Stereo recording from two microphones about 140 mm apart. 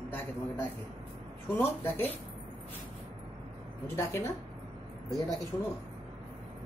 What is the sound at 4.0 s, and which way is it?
Speech, 20° left (ahead or behind).